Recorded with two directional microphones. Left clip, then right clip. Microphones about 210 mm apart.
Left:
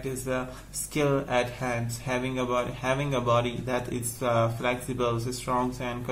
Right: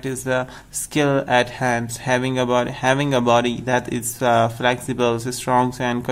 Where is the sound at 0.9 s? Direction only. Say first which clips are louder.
Right 8 dB; 45° right (ahead or behind).